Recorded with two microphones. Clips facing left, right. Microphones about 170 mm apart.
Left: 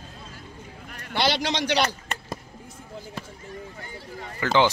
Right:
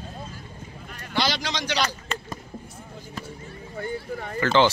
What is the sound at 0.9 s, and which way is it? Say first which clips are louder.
A man's voice: left 1 dB; 60° left (ahead or behind).